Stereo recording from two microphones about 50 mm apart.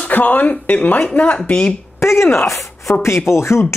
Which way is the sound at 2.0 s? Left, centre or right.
Left.